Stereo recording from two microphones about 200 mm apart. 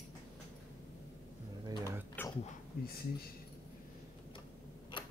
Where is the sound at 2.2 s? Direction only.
10° left (ahead or behind).